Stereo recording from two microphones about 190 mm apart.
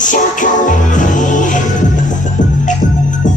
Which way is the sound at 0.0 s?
40° left (ahead or behind).